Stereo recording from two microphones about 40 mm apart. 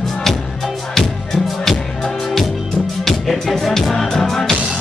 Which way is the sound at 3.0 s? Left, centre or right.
Centre.